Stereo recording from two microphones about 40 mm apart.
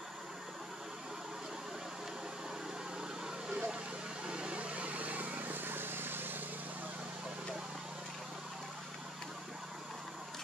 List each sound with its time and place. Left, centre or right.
3.4 s vehicle: centre; by 6.4 s right